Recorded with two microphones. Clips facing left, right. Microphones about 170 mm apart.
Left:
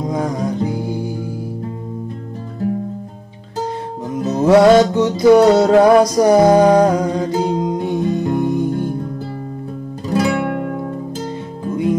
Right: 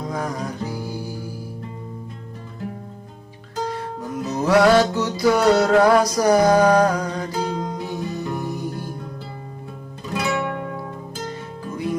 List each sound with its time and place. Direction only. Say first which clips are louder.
0.1 s music: left 7 dB; 20° left (ahead or behind)
3.6 s music: left 3 dB; 20° left (ahead or behind)
10.1 s music: left 7 dB; 35° left (ahead or behind)